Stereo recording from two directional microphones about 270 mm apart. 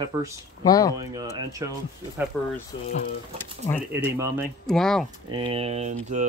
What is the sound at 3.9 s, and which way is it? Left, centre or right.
Speech, centre.